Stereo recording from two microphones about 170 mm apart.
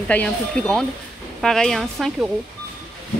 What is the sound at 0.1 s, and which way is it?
Speech, 5° left (ahead or behind).